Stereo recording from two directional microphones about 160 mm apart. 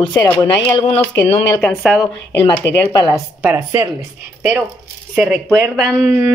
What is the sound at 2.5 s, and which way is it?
Speech, 15° left (ahead or behind).